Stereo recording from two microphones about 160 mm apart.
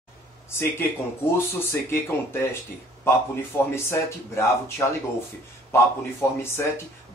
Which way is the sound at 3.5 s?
15° left (ahead or behind).